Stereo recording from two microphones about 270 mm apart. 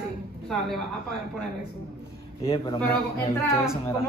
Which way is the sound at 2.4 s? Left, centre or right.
Centre.